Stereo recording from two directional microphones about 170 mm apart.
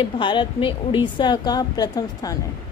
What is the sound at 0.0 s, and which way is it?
Speech, 30° left (ahead or behind).